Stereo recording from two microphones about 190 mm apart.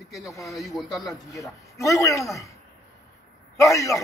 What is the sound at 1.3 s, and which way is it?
Speech, 15° left (ahead or behind).